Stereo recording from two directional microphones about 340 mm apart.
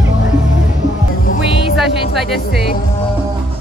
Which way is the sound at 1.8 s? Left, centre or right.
Centre.